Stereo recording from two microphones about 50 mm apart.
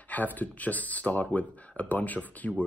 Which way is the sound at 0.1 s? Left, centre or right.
Left.